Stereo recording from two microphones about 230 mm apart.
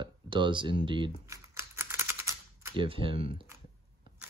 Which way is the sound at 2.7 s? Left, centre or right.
Right.